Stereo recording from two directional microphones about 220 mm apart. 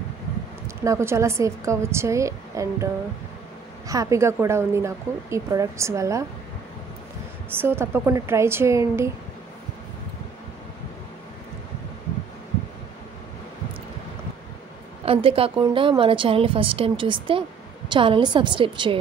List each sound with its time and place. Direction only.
0.8 s speech: 10° right (ahead or behind)
3.9 s speech: 15° right (ahead or behind)
7.5 s speech: 10° right (ahead or behind)
15.0 s a woman's voice: 25° right (ahead or behind)